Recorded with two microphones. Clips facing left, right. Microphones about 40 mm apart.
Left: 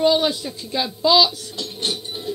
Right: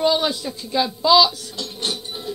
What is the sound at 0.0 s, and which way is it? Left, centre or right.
Speech, centre.